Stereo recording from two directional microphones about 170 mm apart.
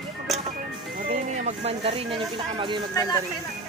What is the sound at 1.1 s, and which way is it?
Speech, 35° right (ahead or behind).